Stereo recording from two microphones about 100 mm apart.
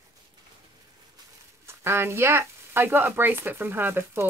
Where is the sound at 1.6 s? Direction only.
25° right (ahead or behind).